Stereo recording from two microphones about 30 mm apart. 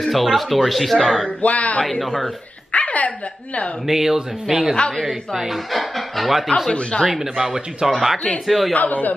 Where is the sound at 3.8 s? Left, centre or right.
Centre.